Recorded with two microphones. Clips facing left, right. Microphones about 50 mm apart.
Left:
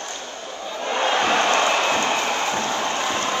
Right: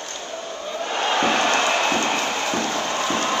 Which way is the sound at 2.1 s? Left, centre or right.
Centre.